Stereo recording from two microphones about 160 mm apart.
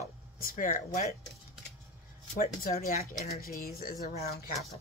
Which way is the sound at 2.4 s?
65° left (ahead or behind).